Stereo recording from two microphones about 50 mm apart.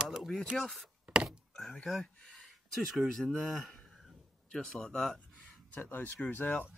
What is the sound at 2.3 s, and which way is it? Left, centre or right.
Speech, centre.